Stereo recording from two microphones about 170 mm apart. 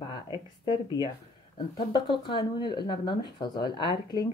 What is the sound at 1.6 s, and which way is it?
Speech, 30° left (ahead or behind).